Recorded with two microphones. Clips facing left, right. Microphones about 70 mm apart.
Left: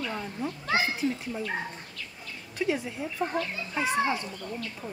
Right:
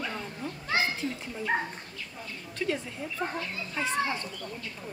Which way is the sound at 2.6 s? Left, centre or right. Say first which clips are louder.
Left 3 dB; centre.